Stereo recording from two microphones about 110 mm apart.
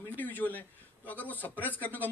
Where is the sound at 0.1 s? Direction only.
15° left (ahead or behind).